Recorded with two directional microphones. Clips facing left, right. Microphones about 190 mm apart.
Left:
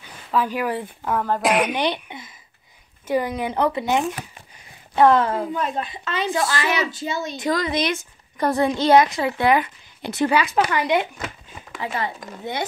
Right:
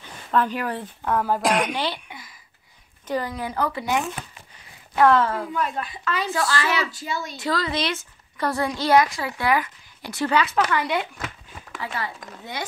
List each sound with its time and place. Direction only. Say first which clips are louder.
0.3 s speech: left 1 dB; 5° left (ahead or behind)
1.2 s a woman's voice: left 2 dB; 5° right (ahead or behind)
1.7 s a woman's voice: left 4 dB; 20° left (ahead or behind)
11.5 s a sound: left 4 dB; 15° left (ahead or behind)